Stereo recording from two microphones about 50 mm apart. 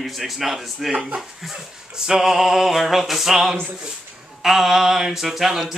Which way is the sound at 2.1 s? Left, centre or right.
Centre.